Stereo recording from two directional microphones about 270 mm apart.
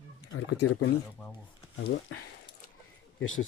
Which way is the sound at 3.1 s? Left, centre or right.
Left.